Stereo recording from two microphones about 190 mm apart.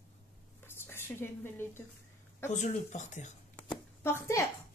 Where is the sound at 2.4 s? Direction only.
40° left (ahead or behind).